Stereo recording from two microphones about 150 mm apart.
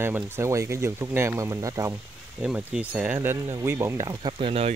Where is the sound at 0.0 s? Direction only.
15° right (ahead or behind).